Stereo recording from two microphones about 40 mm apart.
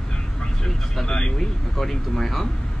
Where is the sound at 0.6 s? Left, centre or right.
Centre.